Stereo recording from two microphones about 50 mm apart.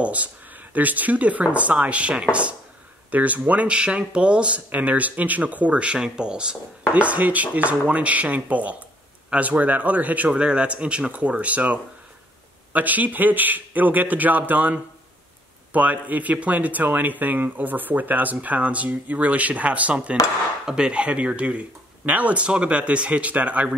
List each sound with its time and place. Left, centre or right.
0.0 s speech: right
20.6 s speech: centre